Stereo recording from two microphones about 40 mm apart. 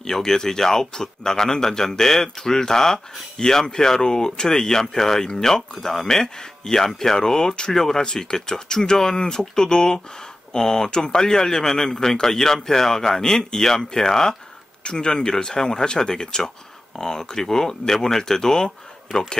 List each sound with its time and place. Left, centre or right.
0.0 s speech: centre
14.8 s speech: left